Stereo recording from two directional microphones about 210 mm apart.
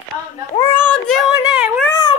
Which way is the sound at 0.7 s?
5° left (ahead or behind).